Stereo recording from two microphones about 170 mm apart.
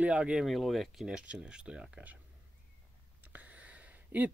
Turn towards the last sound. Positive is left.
turn(degrees=-10)  # may be behind; listen again after turning